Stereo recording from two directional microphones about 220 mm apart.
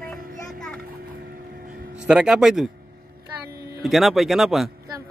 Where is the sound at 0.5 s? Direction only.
Centre (ahead or behind).